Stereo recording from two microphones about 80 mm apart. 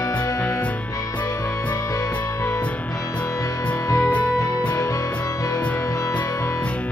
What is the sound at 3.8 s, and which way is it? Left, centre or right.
Music, left.